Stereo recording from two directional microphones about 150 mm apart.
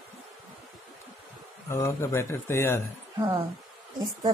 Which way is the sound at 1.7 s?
20° left (ahead or behind).